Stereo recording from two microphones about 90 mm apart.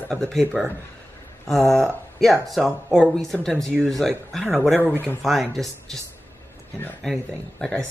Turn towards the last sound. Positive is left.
turn(degrees=5)  # may be behind; listen again after turning